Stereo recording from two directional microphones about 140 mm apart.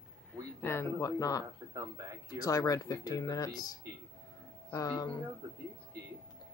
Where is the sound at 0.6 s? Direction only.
20° left (ahead or behind).